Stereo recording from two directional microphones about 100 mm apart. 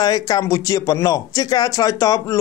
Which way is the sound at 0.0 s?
40° left (ahead or behind).